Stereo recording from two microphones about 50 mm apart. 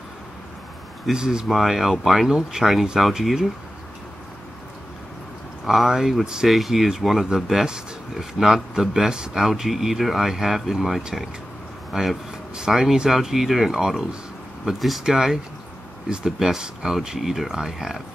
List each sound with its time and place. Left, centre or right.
1.1 s speech: centre
1.5 s speech: centre
5.7 s speech: centre
6.5 s speech: centre